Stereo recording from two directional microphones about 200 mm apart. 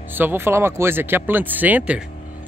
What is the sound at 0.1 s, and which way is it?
Speech, 10° right (ahead or behind).